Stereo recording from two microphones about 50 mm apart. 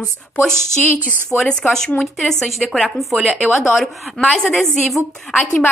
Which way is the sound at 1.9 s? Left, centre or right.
Centre.